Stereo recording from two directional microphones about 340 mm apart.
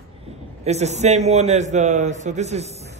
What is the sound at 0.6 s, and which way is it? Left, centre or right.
A man's voice, centre.